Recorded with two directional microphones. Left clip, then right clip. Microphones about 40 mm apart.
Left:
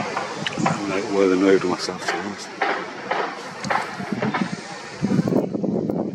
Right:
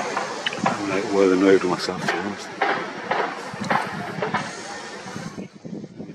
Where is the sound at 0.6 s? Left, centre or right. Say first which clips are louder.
Even; centre.